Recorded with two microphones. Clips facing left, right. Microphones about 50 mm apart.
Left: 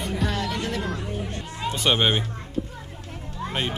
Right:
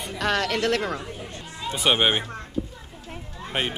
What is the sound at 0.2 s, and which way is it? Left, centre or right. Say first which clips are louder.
Music: right 7 dB; right.